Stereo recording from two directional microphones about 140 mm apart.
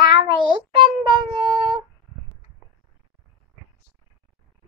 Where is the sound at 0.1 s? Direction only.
35° right (ahead or behind).